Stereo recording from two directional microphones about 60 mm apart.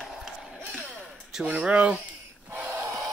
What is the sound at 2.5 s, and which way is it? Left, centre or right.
Gasp, right.